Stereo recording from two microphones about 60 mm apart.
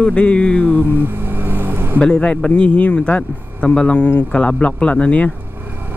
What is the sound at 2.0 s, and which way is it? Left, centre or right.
Speech, centre.